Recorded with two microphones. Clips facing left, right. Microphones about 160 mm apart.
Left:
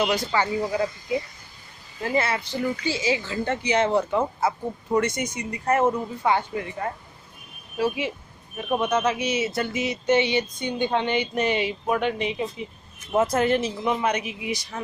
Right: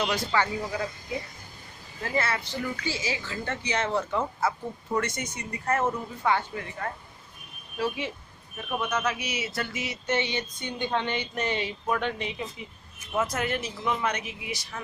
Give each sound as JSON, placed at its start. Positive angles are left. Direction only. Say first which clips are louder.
{"t": 0.0, "sound": "speech", "louder": "left 3 dB", "side_deg": 10}
{"t": 2.0, "sound": "speech", "louder": "left 4 dB", "side_deg": 20}
{"t": 8.6, "sound": "speech", "louder": "left 6 dB", "side_deg": 25}
{"t": 13.1, "sound": "speech", "louder": "left 7 dB", "side_deg": 30}
{"t": 14.0, "sound": "speech", "louder": "left 5 dB", "side_deg": 15}